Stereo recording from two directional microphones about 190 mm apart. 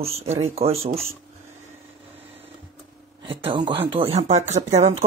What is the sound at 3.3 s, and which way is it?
Speech, 25° right (ahead or behind).